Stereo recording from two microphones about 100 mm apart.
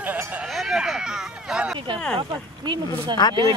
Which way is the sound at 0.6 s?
5° right (ahead or behind).